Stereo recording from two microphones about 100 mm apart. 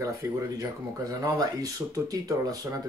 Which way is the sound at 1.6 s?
35° right (ahead or behind).